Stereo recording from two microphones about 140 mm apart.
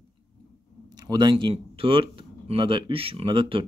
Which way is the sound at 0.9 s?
30° right (ahead or behind).